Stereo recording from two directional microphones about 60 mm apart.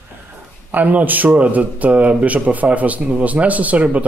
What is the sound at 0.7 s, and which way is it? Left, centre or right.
Speech, right.